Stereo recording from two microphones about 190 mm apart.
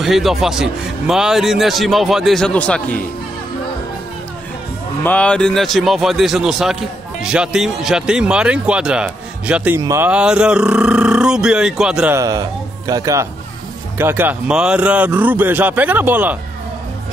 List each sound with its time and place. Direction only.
0.0 s speech: centre (ahead or behind)
5.0 s speech: 5° left (ahead or behind)
12.2 s speech: 20° right (ahead or behind)